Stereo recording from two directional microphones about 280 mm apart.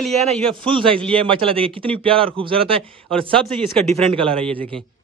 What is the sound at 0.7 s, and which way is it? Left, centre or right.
A man's voice, centre.